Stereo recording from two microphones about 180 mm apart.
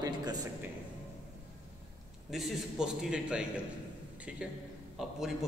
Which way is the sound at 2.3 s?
5° right (ahead or behind).